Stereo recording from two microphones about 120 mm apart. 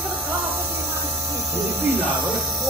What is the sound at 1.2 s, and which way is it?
Mains hum, 25° right (ahead or behind).